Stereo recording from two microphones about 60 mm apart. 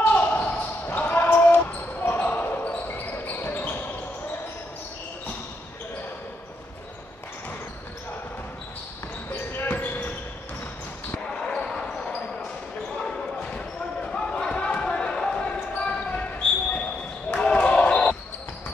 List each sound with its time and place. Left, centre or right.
0.0 s basketball bounce: left
9.5 s basketball bounce: left
11.3 s basketball bounce: centre
13.0 s basketball bounce: centre
17.3 s basketball bounce: centre